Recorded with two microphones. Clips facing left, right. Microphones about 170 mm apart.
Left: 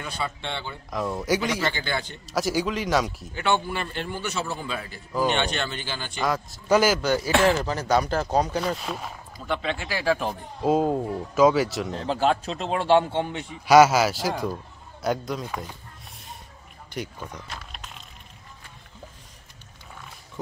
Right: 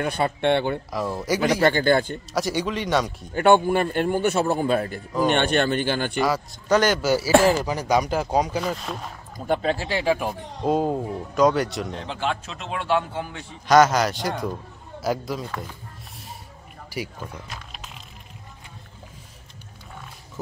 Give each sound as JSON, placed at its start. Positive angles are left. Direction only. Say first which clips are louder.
{"t": 0.0, "sound": "speech", "louder": "right 10 dB", "side_deg": -55}
{"t": 0.8, "sound": "a man's voice", "louder": "even", "side_deg": 0}
{"t": 1.7, "sound": "a man's voice", "louder": "right 10 dB", "side_deg": -50}
{"t": 2.3, "sound": "a man's voice", "louder": "even", "side_deg": 0}
{"t": 3.3, "sound": "a man's voice", "louder": "right 8 dB", "side_deg": -50}
{"t": 6.2, "sound": "a man's voice", "louder": "right 2 dB", "side_deg": 0}
{"t": 7.0, "sound": "speech", "louder": "right 4 dB", "side_deg": -5}
{"t": 9.4, "sound": "a man's voice", "louder": "right 5 dB", "side_deg": -45}
{"t": 9.8, "sound": "speech", "louder": "even", "side_deg": -25}
{"t": 10.6, "sound": "a man's voice", "louder": "even", "side_deg": 0}
{"t": 11.9, "sound": "a man's voice", "louder": "left 4 dB", "side_deg": 40}
{"t": 13.7, "sound": "a man's voice", "louder": "left 1 dB", "side_deg": 10}
{"t": 16.9, "sound": "speech", "louder": "right 1 dB", "side_deg": -5}